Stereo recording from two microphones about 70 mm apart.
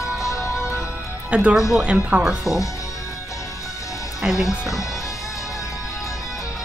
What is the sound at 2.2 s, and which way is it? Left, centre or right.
Speech, centre.